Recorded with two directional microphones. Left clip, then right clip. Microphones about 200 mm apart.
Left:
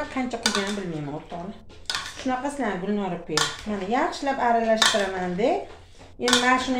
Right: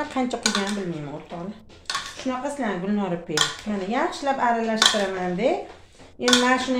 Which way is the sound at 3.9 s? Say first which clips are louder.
Even; 25° right (ahead or behind).